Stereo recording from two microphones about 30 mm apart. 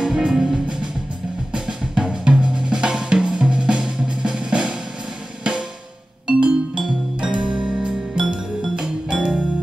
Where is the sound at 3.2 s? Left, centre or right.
Right.